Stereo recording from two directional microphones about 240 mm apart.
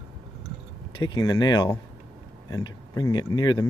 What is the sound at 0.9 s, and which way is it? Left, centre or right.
Speech, centre.